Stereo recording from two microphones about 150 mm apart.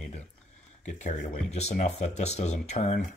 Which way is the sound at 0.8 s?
50° left (ahead or behind).